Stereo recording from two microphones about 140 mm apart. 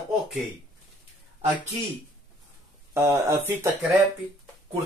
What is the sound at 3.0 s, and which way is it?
Speech, 20° right (ahead or behind).